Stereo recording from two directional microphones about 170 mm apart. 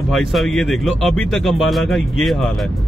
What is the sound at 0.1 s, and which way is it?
Speech, centre (ahead or behind).